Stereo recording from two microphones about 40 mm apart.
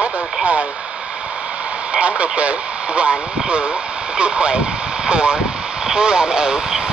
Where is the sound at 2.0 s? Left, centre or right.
Right.